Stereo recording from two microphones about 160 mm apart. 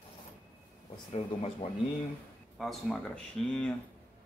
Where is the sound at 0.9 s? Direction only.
40° left (ahead or behind).